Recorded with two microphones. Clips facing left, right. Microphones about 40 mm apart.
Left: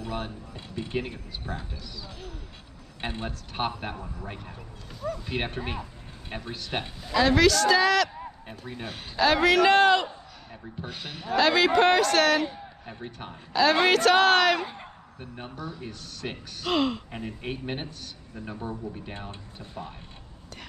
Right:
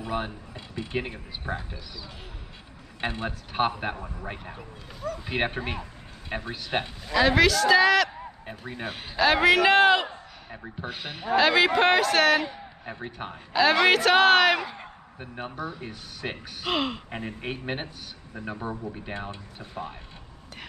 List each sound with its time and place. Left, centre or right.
0.0 s a man's voice: centre
3.3 s a man's voice: centre
12.9 s a man's voice: right
19.6 s speech: right